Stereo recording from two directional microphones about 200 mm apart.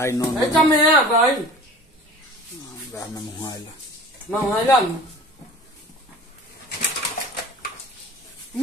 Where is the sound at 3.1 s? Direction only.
20° left (ahead or behind).